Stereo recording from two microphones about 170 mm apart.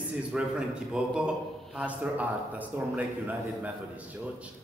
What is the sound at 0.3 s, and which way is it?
A man's voice, 5° right (ahead or behind).